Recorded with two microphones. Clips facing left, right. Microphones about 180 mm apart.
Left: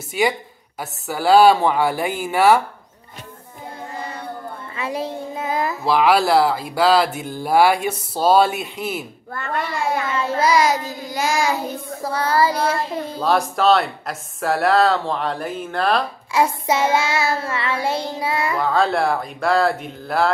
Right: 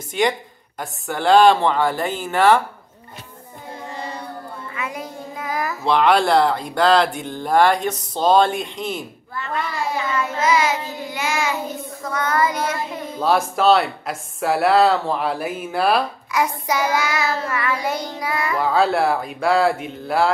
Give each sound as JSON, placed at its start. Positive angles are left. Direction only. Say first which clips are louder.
{"t": 0.1, "sound": "speech", "louder": "even", "side_deg": 5}
{"t": 4.7, "sound": "child singing", "louder": "left 5 dB", "side_deg": 30}
{"t": 5.9, "sound": "speech", "louder": "even", "side_deg": 5}
{"t": 9.3, "sound": "a child's voice", "louder": "left 1 dB", "side_deg": 50}
{"t": 10.1, "sound": "child singing", "louder": "left 1 dB", "side_deg": 30}
{"t": 13.2, "sound": "speech", "louder": "right 1 dB", "side_deg": 0}
{"t": 16.3, "sound": "child singing", "louder": "left 3 dB", "side_deg": 25}
{"t": 18.6, "sound": "speech", "louder": "right 2 dB", "side_deg": -5}